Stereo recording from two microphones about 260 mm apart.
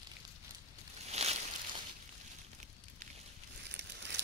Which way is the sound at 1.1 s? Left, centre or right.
Right.